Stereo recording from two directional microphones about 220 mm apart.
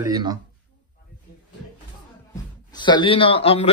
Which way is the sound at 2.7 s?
20° left (ahead or behind).